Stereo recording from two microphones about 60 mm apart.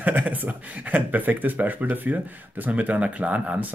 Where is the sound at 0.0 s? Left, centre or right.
Right.